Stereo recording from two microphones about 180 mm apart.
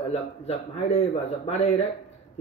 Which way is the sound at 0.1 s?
35° left (ahead or behind).